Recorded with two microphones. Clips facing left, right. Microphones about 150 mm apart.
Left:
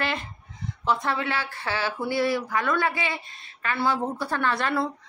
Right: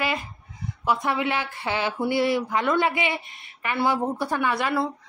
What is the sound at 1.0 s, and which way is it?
Speech, 20° right (ahead or behind).